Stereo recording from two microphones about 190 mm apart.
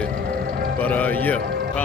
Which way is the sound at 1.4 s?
60° right (ahead or behind).